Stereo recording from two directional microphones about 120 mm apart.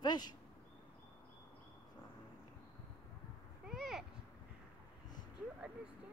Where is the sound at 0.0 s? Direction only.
35° left (ahead or behind).